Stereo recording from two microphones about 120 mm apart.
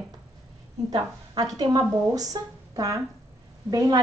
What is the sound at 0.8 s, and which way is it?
A woman's voice, 35° right (ahead or behind).